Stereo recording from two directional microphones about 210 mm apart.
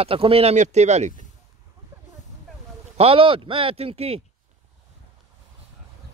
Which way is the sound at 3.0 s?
25° right (ahead or behind).